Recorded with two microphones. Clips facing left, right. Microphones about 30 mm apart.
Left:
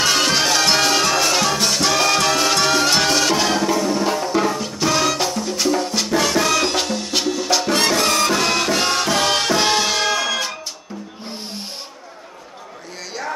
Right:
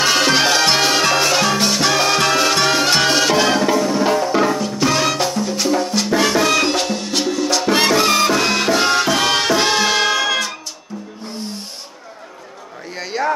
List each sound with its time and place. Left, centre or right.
0.0 s music: centre
7.6 s music: centre
13.1 s a sound: centre